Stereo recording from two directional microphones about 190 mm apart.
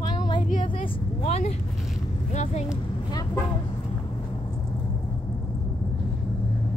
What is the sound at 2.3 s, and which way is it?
Speech, 35° left (ahead or behind).